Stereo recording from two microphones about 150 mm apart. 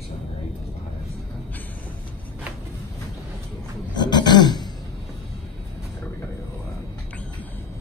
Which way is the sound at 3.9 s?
30° left (ahead or behind).